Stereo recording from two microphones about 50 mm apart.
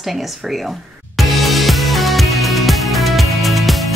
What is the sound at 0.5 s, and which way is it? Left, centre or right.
Music, centre.